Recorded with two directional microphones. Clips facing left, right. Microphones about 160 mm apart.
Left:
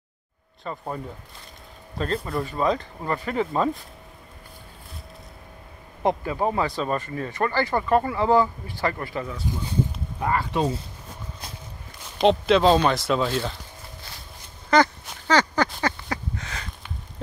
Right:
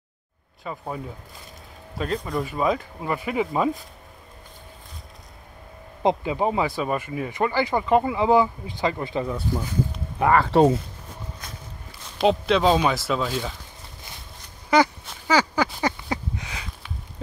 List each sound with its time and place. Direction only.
0.7 s speech: 5° right (ahead or behind)
2.1 s speech: 5° left (ahead or behind)
2.4 s speech: 10° right (ahead or behind)
6.0 s speech: 15° right (ahead or behind)
10.1 s speech: 80° right
12.2 s speech: centre (ahead or behind)
14.7 s speech: 10° right (ahead or behind)
15.2 s a sound: 10° right (ahead or behind)